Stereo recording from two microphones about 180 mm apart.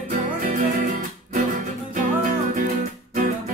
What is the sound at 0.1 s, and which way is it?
Music, 45° right (ahead or behind).